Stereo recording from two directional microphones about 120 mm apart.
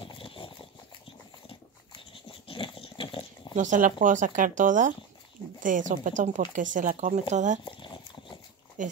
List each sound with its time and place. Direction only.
0.0 s horse: 45° left (ahead or behind)
2.4 s dog: 45° left (ahead or behind)
3.5 s speech: 90° right
7.6 s a sound: 45° left (ahead or behind)
8.8 s speech: 90° right